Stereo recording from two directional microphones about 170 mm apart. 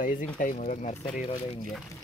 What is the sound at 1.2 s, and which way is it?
Speech, 35° left (ahead or behind).